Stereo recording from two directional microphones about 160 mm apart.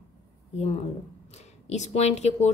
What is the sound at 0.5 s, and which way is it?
Speech, 45° left (ahead or behind).